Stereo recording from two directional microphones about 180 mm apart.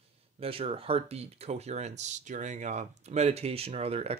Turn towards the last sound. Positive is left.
turn(degrees=-35)  # may be behind; listen again after turning